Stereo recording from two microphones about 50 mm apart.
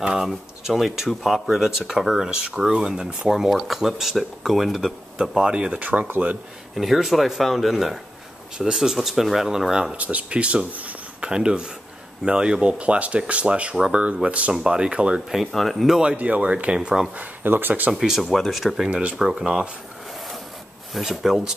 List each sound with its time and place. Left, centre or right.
0.0 s speech: centre
0.3 s speech: centre
5.7 s speech: right
6.7 s speech: centre
9.9 s speech: right
15.3 s speech: centre
16.2 s speech: right
17.2 s speech: right
17.9 s speech: centre
18.9 s speech: right
20.9 s speech: centre